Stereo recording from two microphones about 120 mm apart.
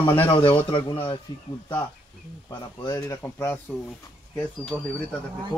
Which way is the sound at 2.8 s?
30° left (ahead or behind).